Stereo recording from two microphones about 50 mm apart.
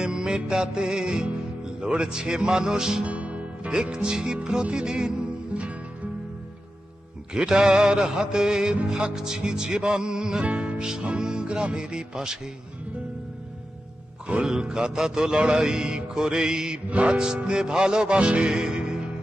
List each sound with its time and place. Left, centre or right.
0.0 s music: centre
1.8 s mantra: centre
3.1 s music: right
7.3 s mantra: centre
10.5 s music: right
10.9 s mantra: centre
14.2 s mantra: centre